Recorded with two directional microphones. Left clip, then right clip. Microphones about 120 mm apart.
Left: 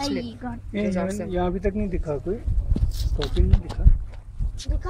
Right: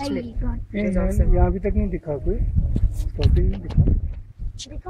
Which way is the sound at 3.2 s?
Centre (ahead or behind).